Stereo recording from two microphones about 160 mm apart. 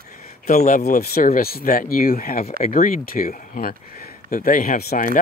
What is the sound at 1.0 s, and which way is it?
Speech, 65° left (ahead or behind).